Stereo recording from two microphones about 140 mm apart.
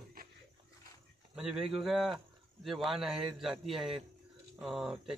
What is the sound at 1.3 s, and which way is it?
A man's voice, 5° right (ahead or behind).